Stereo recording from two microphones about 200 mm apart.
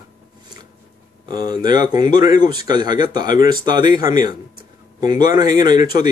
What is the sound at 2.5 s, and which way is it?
Speech, 20° right (ahead or behind).